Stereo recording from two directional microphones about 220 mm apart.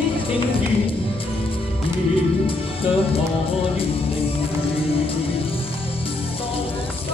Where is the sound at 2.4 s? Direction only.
25° left (ahead or behind).